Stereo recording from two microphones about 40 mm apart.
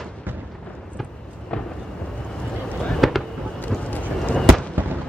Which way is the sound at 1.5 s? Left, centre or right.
Left.